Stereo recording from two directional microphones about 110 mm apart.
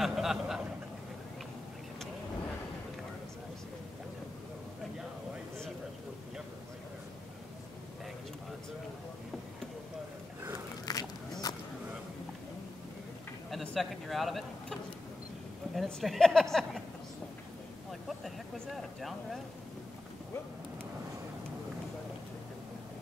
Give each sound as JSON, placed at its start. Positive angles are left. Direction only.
{"t": 0.0, "sound": "speech", "side_deg": -5}
{"t": 10.9, "sound": "biting", "side_deg": 35}
{"t": 11.4, "sound": "vehicle", "side_deg": 35}
{"t": 13.5, "sound": "a sound", "side_deg": 0}
{"t": 15.7, "sound": "speech", "side_deg": 0}
{"t": 18.0, "sound": "vehicle", "side_deg": 0}